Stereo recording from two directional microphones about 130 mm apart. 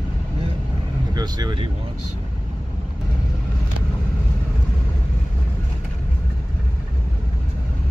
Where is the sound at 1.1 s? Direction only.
35° right (ahead or behind).